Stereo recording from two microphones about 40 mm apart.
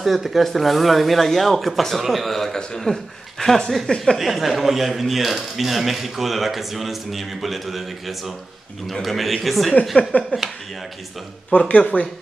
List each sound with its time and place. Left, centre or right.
0.0 s speech: centre
11.5 s speech: left